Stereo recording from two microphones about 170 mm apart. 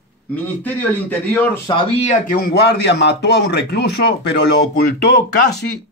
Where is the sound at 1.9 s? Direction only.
50° left (ahead or behind); by 4.4 s 75° left (ahead or behind).